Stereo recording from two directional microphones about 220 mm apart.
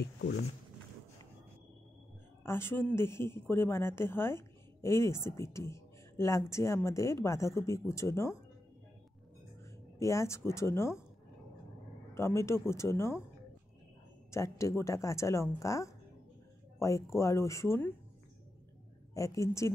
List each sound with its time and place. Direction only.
0.0 s speech: 50° left (ahead or behind)
2.4 s speech: 10° left (ahead or behind)
9.9 s speech: 15° left (ahead or behind)
12.1 s speech: 10° left (ahead or behind)
14.3 s speech: 15° left (ahead or behind)
19.1 s speech: 15° left (ahead or behind)